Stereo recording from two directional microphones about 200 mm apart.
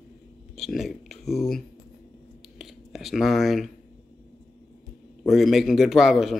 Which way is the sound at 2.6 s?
Centre (ahead or behind).